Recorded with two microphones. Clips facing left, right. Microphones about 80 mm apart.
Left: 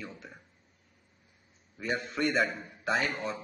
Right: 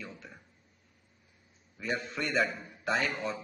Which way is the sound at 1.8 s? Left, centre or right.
Centre.